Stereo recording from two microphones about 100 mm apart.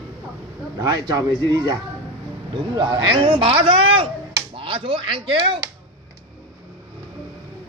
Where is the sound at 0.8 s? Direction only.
45° right (ahead or behind).